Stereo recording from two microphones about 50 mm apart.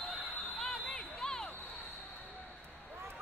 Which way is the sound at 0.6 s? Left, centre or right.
Centre.